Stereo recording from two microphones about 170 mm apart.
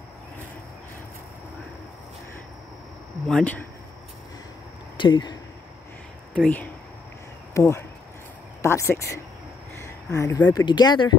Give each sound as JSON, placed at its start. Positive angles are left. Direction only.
{"t": 3.3, "sound": "speech", "side_deg": 5}
{"t": 4.9, "sound": "speech", "side_deg": 25}
{"t": 6.3, "sound": "speech", "side_deg": 10}